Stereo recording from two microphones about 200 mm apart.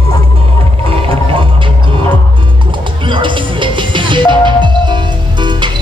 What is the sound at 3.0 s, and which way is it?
Music, 25° right (ahead or behind).